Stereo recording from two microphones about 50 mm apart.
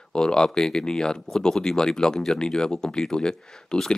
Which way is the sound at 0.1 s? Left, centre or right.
Centre.